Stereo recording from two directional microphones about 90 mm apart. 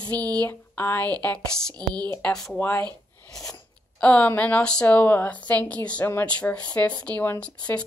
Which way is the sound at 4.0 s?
15° left (ahead or behind).